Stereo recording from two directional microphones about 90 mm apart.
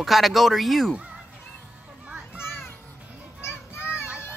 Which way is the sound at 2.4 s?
25° left (ahead or behind).